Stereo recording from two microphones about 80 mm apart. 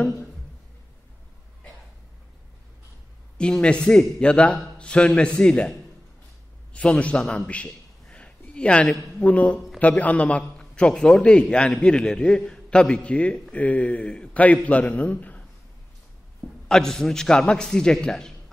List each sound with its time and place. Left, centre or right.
3.3 s a man's voice: centre
16.6 s a man's voice: centre